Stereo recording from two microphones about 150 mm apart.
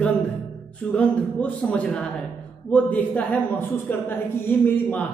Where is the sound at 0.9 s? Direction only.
10° left (ahead or behind).